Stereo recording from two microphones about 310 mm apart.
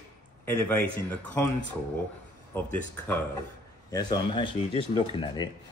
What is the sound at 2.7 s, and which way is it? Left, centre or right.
A man's voice, centre.